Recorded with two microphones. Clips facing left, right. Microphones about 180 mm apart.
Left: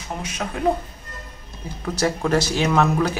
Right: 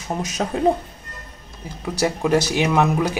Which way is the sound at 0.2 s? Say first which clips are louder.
Right 6 dB; 40° right (ahead or behind).